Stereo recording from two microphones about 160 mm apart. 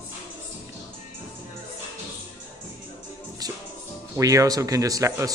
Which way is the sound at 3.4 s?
25° right (ahead or behind).